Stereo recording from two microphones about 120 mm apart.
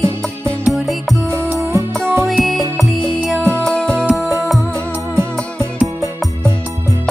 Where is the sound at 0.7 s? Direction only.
Centre (ahead or behind).